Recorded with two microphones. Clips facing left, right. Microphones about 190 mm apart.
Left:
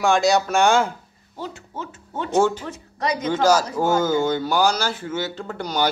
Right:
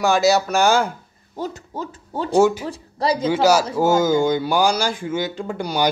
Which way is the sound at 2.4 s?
10° right (ahead or behind).